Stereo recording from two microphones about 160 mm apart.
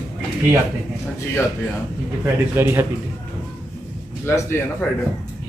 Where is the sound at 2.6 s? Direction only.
15° right (ahead or behind).